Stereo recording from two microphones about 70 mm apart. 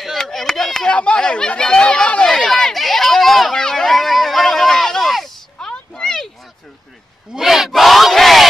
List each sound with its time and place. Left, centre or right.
0.2 s chop: centre
0.9 s speech: centre
2.2 s run: centre
5.7 s a sound: centre
7.3 s battle cry: centre